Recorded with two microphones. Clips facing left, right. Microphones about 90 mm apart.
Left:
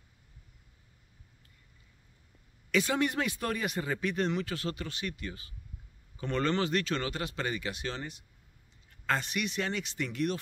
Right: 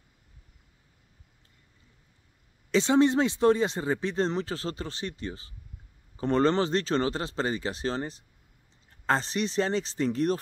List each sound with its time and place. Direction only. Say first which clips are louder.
2.7 s speech: right 7 dB; 25° right (ahead or behind)